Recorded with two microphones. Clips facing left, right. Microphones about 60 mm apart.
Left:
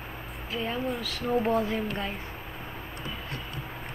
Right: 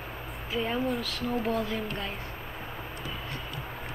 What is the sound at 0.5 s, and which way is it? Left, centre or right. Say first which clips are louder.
A woman's voice: right 2 dB; centre.